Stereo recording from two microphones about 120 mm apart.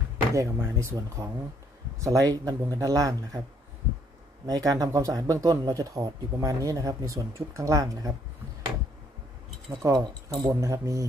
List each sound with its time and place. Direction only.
0.3 s speech: 25° right (ahead or behind)
4.5 s speech: 30° right (ahead or behind)
9.8 s speech: 30° right (ahead or behind)